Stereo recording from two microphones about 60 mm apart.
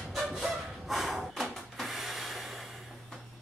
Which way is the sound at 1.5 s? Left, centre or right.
Centre.